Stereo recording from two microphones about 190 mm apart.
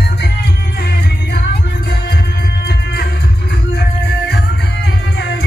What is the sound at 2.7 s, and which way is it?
Music, 55° left (ahead or behind).